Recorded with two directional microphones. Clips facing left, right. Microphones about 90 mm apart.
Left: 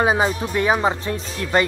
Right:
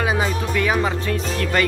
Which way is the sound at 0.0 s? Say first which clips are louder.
Left 3 dB; 30° left (ahead or behind).